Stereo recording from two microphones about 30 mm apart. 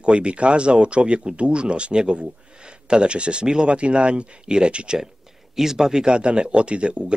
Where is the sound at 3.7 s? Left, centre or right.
Right.